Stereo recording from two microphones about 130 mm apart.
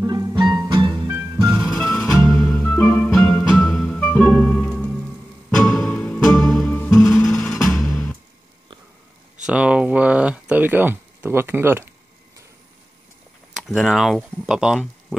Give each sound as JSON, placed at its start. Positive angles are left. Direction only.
{"t": 0.0, "sound": "music", "side_deg": -30}
{"t": 1.0, "sound": "music", "side_deg": -20}
{"t": 1.6, "sound": "music", "side_deg": 5}
{"t": 7.8, "sound": "music", "side_deg": 5}
{"t": 9.5, "sound": "a sound", "side_deg": -10}
{"t": 11.1, "sound": "speech", "side_deg": -20}
{"t": 13.6, "sound": "speech", "side_deg": -5}